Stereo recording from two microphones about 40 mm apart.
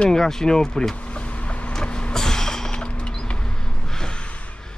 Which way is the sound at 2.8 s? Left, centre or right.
Left.